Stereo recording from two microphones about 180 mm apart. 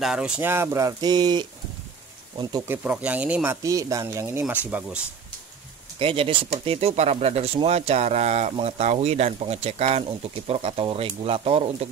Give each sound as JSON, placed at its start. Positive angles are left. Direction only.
{"t": 0.0, "sound": "speech", "side_deg": -5}
{"t": 2.7, "sound": "speech", "side_deg": -10}
{"t": 5.9, "sound": "speech", "side_deg": -30}